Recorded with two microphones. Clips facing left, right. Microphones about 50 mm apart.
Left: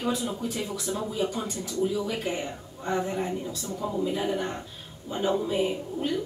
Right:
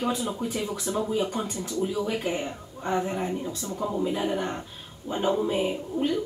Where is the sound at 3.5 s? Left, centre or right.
Right.